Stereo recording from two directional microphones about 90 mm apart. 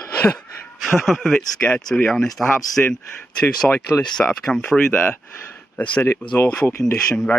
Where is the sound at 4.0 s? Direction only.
10° left (ahead or behind).